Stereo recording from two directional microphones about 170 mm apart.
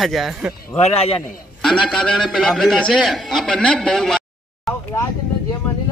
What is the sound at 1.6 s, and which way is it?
A man's voice, 5° left (ahead or behind).